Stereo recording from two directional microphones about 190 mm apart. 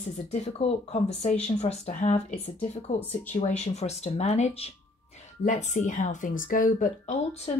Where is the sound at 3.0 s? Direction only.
10° left (ahead or behind).